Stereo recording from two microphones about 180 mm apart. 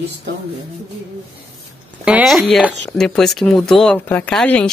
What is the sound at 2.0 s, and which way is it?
Speech, 5° right (ahead or behind).